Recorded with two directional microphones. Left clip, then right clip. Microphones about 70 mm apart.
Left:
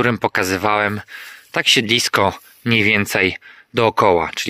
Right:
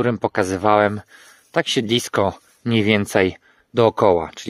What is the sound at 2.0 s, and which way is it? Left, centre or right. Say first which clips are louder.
Speech: left 4 dB; right.